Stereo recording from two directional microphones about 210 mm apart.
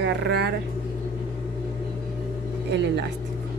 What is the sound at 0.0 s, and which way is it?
Speech, 55° right (ahead or behind).